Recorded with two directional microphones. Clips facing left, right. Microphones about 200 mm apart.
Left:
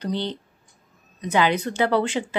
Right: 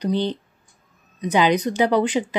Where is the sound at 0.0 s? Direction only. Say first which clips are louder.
Right 5 dB; 15° right (ahead or behind).